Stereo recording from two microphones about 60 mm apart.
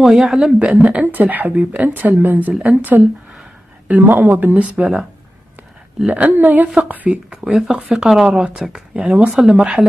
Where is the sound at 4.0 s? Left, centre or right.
Right.